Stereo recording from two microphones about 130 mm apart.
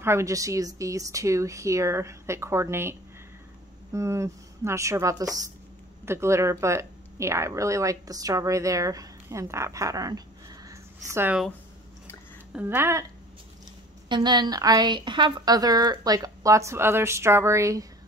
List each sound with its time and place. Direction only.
0.0 s a woman's voice: 20° right (ahead or behind)
12.5 s speech: 15° right (ahead or behind)
14.0 s a woman's voice: 35° right (ahead or behind)